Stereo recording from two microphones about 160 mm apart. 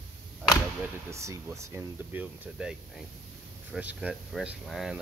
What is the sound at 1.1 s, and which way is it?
Speech, 20° right (ahead or behind).